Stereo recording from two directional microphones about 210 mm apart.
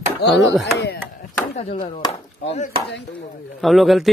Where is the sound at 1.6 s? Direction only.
30° left (ahead or behind).